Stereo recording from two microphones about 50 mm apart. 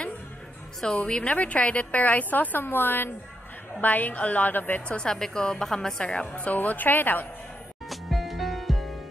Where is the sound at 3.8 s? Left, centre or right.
Left.